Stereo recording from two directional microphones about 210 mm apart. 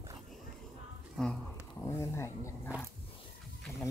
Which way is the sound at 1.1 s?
Centre (ahead or behind).